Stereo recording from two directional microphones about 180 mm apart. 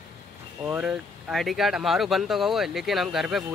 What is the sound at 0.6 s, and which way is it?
Speech, 5° right (ahead or behind).